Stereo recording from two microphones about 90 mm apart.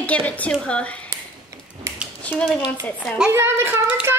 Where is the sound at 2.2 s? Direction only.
15° left (ahead or behind).